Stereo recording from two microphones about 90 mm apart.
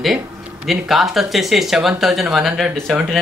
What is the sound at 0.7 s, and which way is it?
Speech, centre (ahead or behind).